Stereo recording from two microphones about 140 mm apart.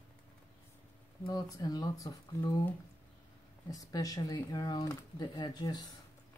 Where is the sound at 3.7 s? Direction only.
25° left (ahead or behind).